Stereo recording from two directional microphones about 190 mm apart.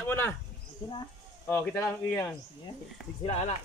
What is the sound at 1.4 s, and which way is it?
Speech, 10° left (ahead or behind).